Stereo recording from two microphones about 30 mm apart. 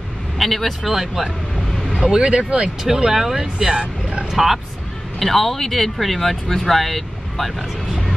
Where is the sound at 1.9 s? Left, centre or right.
Right.